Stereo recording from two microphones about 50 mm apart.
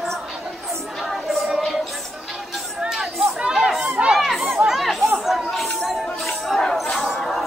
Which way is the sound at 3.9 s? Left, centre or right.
Right.